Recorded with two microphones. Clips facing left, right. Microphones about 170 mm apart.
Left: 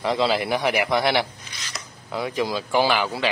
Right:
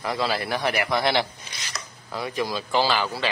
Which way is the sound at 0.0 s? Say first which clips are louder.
Left 4 dB; 20° left (ahead or behind).